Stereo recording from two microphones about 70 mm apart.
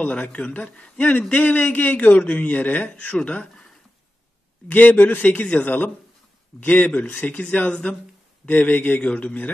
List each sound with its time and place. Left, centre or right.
0.0 s a man's voice: centre
4.6 s a man's voice: left